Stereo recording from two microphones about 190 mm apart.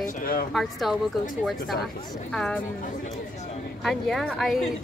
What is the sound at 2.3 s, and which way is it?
Speech, 5° left (ahead or behind).